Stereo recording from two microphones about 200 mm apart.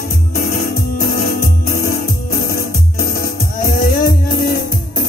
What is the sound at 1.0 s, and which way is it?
Music, 50° left (ahead or behind).